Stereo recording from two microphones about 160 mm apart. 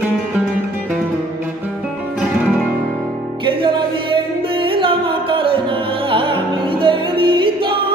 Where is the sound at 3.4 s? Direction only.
30° right (ahead or behind).